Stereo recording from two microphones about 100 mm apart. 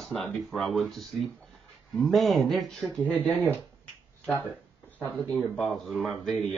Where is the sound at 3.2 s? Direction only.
15° left (ahead or behind).